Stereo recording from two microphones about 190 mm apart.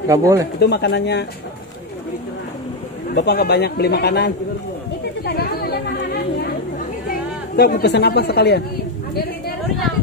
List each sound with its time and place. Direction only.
0.1 s speech: 15° right (ahead or behind)
0.6 s speech: 60° left (ahead or behind)
3.2 s speech: 60° left (ahead or behind)
5.2 s chatter: 55° left (ahead or behind)
7.1 s a woman's voice: 55° left (ahead or behind)